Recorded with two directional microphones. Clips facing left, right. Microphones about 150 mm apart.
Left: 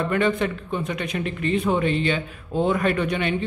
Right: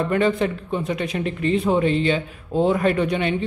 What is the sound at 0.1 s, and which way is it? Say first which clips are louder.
Speech: right 2 dB; 30° right (ahead or behind).